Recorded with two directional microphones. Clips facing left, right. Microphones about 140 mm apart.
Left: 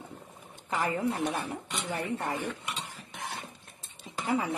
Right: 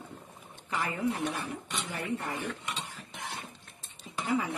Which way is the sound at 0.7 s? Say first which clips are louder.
Left 2 dB; 35° left (ahead or behind).